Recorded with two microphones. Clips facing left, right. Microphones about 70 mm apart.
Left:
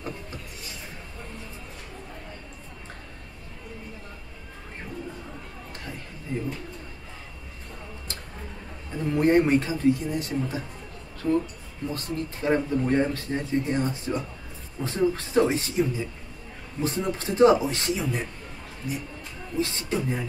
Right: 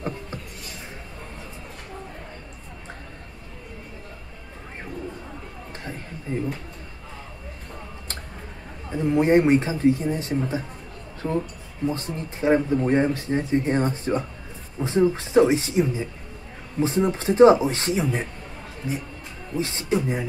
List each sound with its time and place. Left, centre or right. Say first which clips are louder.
8.9 s speech: right 3 dB; centre
14.8 s speech: right 4 dB; centre